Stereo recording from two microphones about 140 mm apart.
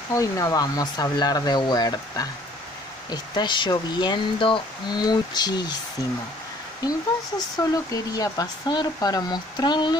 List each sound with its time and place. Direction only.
0.1 s speech: 25° left (ahead or behind)
7.3 s speech: 25° left (ahead or behind)